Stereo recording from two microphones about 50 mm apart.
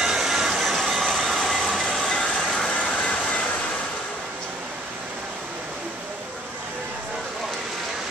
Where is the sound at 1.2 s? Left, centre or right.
Centre.